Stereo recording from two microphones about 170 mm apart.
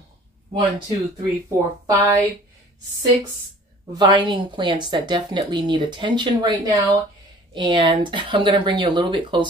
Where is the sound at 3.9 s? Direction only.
25° right (ahead or behind).